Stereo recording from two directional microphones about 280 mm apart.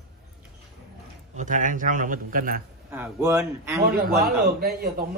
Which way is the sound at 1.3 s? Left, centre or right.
Right.